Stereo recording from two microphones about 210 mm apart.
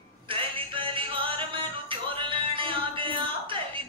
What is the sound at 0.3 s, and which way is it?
Music, 25° right (ahead or behind).